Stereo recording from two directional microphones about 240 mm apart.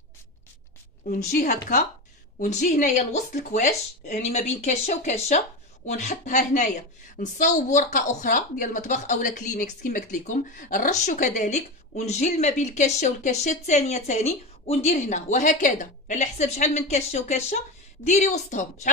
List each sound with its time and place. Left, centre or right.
1.0 s a woman's voice: left